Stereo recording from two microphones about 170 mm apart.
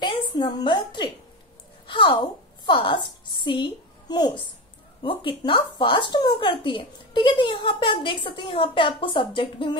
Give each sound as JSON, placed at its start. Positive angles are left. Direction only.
{"t": 0.0, "sound": "a woman's voice", "side_deg": 25}